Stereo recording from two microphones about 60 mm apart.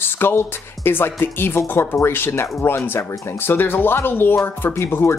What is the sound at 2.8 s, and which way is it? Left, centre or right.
Speech, left.